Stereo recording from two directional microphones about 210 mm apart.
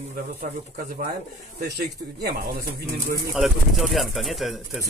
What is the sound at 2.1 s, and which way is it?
Speech, 45° right (ahead or behind).